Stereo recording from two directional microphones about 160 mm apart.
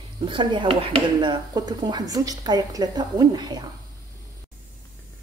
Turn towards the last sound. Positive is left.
turn(degrees=-25)  # may be behind; listen again after turning